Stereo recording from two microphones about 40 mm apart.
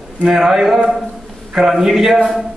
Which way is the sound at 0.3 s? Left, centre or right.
Centre.